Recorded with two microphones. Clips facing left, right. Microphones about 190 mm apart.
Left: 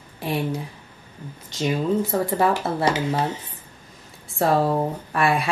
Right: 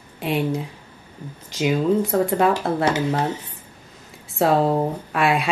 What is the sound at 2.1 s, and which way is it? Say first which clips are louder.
Speech: right 2 dB; centre (ahead or behind).